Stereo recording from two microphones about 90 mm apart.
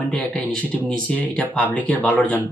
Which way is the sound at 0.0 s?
15° left (ahead or behind).